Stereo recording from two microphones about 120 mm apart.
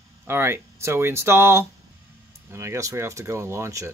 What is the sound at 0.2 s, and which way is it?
Speech, 20° right (ahead or behind).